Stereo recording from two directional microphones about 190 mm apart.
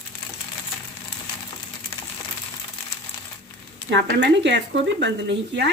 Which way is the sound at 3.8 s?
65° right (ahead or behind).